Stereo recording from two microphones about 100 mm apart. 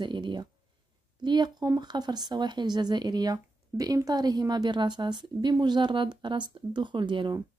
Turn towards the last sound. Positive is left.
turn(degrees=-55)  # may be behind; listen again after turning